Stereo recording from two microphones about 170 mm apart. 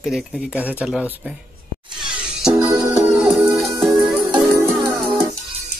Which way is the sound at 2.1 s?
5° right (ahead or behind).